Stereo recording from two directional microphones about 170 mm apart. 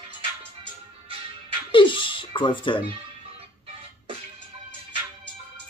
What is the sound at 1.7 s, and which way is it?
Music, 30° left (ahead or behind).